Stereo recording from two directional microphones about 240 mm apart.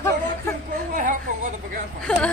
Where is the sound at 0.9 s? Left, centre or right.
Right.